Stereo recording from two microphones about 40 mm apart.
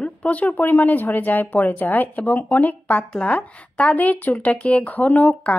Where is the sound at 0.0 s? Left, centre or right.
Left.